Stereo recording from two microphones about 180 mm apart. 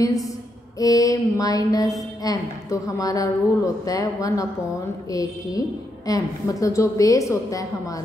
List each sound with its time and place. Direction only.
0.7 s a woman's voice: 20° left (ahead or behind)